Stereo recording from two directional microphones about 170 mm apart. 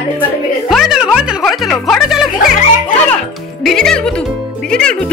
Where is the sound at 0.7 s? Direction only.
Centre (ahead or behind).